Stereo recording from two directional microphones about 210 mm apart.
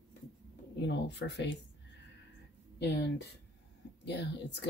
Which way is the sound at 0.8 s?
55° left (ahead or behind).